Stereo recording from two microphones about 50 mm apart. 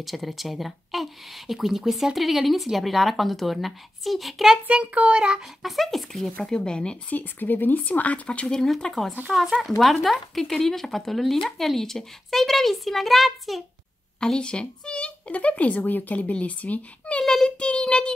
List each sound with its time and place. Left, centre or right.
0.0 s speech: centre
4.9 s child singing: right
5.6 s speech: centre
6.3 s speech: centre
7.1 s speech: left
8.5 s speech: centre
14.2 s speech: centre
17.2 s child singing: centre